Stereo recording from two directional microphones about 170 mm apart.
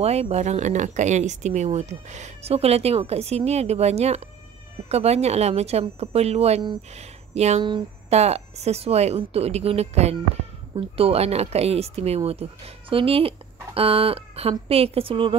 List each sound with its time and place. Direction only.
0.0 s speech: 40° right (ahead or behind)